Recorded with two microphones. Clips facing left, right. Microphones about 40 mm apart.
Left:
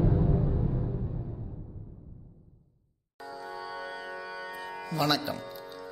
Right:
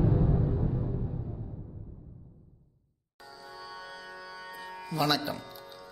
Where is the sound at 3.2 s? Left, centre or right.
Left.